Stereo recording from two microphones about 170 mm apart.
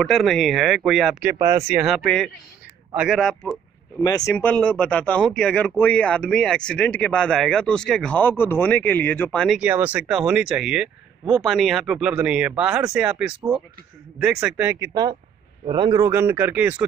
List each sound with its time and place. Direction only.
0.0 s speech: centre (ahead or behind)
4.0 s speech: 20° left (ahead or behind)
9.6 s speech: 10° right (ahead or behind)
14.8 s a man's voice: 20° right (ahead or behind)
16.1 s speech: 15° right (ahead or behind)